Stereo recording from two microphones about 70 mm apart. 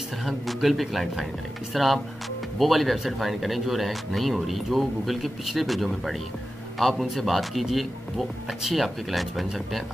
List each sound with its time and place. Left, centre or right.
0.2 s speech: centre